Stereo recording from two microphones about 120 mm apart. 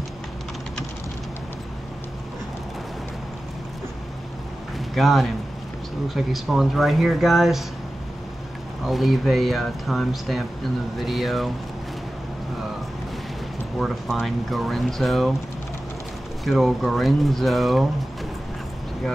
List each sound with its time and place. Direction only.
4.9 s speech: centre (ahead or behind)
8.8 s speech: centre (ahead or behind)
13.7 s speech: centre (ahead or behind)
16.4 s speech: centre (ahead or behind)